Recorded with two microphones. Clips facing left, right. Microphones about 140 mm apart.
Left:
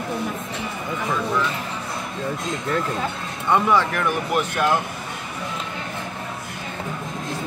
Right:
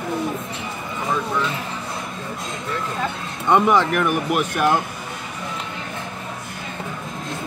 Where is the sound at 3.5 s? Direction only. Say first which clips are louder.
Right 3 dB; 15° right (ahead or behind).